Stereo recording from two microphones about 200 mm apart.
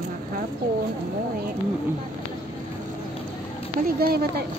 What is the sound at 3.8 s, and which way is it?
Speech, 50° right (ahead or behind).